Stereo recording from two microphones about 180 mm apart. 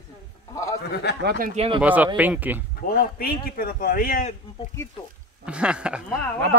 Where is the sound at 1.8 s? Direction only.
10° right (ahead or behind).